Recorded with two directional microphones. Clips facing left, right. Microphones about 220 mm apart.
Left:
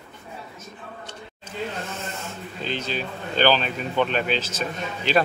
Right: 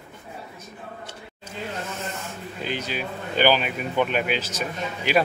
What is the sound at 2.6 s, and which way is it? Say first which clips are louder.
Speech: left 1 dB; 10° right (ahead or behind).